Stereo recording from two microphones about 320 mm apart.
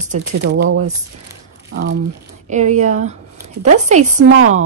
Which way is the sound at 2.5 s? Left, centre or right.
Right.